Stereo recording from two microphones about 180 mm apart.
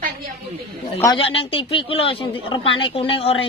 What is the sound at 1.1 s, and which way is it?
Speech, 30° left (ahead or behind).